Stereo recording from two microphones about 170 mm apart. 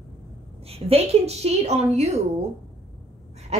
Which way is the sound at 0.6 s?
35° right (ahead or behind).